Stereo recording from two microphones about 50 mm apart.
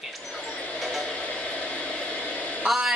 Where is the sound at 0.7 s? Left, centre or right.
Centre.